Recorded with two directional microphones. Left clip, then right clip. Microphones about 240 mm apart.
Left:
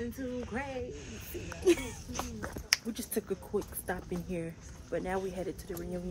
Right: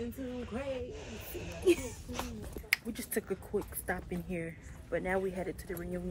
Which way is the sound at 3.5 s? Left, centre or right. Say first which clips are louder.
Even; centre.